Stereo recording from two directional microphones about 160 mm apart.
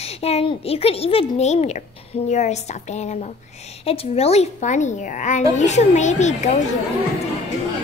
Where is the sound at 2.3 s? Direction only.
45° left (ahead or behind).